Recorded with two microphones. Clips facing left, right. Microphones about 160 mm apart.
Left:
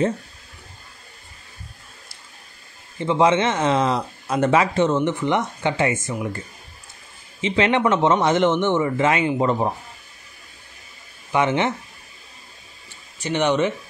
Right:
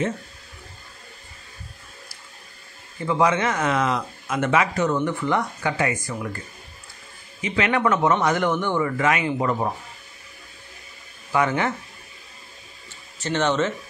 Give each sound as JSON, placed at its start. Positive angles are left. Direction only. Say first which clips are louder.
{"t": 3.0, "sound": "speech", "louder": "left 3 dB", "side_deg": 25}
{"t": 7.4, "sound": "speech", "louder": "left 3 dB", "side_deg": 25}
{"t": 11.3, "sound": "speech", "louder": "left 2 dB", "side_deg": 20}
{"t": 13.2, "sound": "speech", "louder": "left 2 dB", "side_deg": 15}